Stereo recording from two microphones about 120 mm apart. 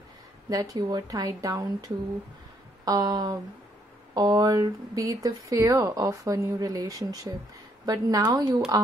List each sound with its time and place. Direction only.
0.5 s a woman's voice: 30° right (ahead or behind)